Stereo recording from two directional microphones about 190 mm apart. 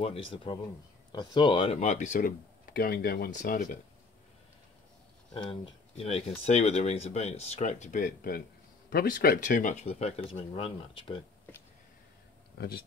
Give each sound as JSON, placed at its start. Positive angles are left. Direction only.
{"t": 0.0, "sound": "speech", "side_deg": 30}
{"t": 5.5, "sound": "speech", "side_deg": 30}
{"t": 12.5, "sound": "speech", "side_deg": 55}